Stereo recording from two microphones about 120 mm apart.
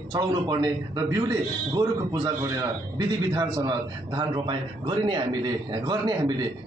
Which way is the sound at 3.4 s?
35° right (ahead or behind).